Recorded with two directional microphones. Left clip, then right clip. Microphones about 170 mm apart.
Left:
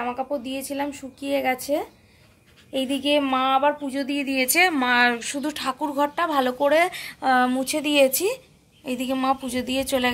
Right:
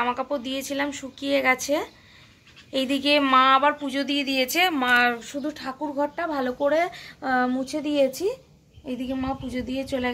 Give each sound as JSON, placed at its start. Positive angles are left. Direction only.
{"t": 0.0, "sound": "speech", "side_deg": 5}
{"t": 8.8, "sound": "a woman's voice", "side_deg": 35}